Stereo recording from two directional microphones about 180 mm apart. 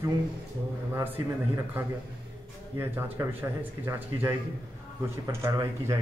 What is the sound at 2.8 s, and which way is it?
Speech, 15° right (ahead or behind).